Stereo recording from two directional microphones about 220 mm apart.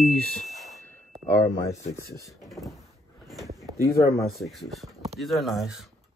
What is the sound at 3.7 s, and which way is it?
Speech, 15° left (ahead or behind).